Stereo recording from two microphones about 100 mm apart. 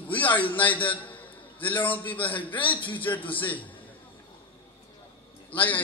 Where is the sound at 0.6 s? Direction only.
15° left (ahead or behind).